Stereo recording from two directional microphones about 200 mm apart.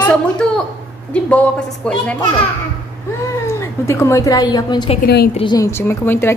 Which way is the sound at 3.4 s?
15° left (ahead or behind).